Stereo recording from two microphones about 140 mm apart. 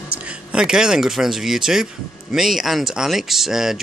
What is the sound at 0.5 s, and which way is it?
Speech, 5° right (ahead or behind).